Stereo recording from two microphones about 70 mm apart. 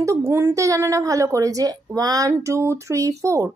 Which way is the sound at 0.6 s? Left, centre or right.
Right.